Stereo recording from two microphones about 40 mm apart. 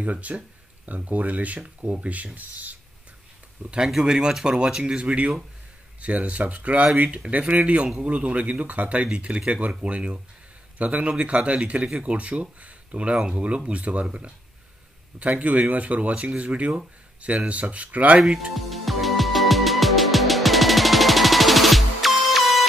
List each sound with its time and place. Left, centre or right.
0.0 s speech: right
1.6 s speech: right
3.7 s speech: right
5.9 s speech: right
15.7 s speech: right
18.5 s music: centre